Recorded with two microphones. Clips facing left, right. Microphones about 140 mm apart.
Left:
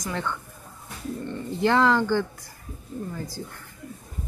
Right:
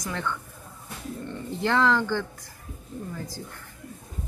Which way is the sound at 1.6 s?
15° left (ahead or behind).